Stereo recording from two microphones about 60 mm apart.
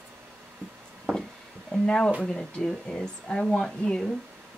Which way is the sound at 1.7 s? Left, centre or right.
Centre.